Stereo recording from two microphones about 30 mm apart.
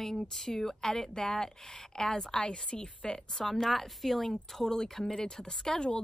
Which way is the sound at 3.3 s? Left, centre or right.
Centre.